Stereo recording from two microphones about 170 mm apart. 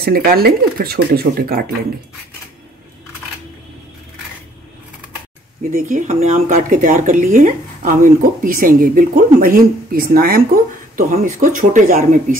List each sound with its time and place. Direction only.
0.0 s speech: 60° right (ahead or behind)
5.7 s speech: 50° right (ahead or behind)